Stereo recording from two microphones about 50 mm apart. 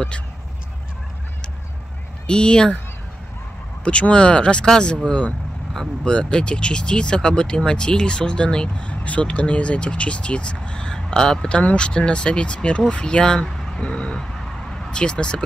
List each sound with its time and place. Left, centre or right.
2.2 s speech: centre
3.8 s speech: left
12.9 s vehicle: centre
14.7 s speech: centre